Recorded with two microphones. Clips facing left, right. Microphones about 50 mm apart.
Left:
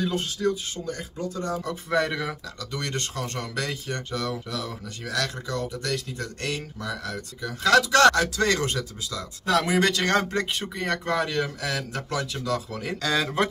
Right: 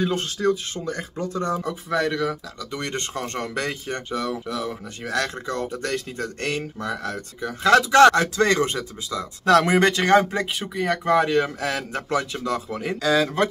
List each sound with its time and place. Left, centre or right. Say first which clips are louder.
0.1 s speech: right 3 dB; right
1.9 s speech: right 2 dB; centre
2.6 s speech: right 1 dB; right
4.2 s speech: right 3 dB; centre
5.1 s speech: right 3 dB; right
9.5 s speech: right 6 dB; right
9.8 s speech: right 4 dB; right
10.0 s speech: right 6 dB; centre
11.1 s speech: right 9 dB; right
13.0 s speech: right 4 dB; centre